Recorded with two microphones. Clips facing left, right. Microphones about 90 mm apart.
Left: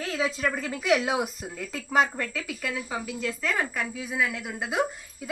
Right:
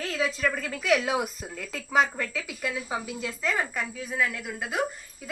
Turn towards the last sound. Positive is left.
turn(degrees=15)  # may be behind; listen again after turning